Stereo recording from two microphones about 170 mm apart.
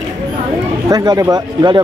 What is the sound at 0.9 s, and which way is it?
Speech, 25° right (ahead or behind).